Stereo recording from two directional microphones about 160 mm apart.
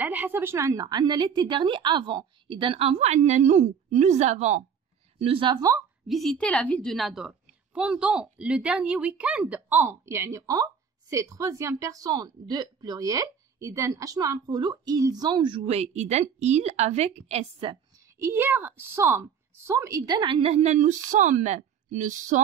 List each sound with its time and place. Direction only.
0.0 s a woman's voice: 10° right (ahead or behind); by 4.6 s 45° right (ahead or behind)
5.2 s a woman's voice: 30° right (ahead or behind)
6.0 s a woman's voice: centre (ahead or behind); by 17.7 s 40° right (ahead or behind)
18.2 s a woman's voice: 15° right (ahead or behind); by 22.4 s 50° right (ahead or behind)